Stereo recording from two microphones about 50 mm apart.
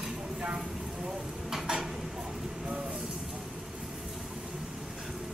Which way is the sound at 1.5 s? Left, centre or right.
Centre.